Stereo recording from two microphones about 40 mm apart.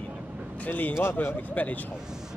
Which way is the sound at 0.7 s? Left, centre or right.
Left.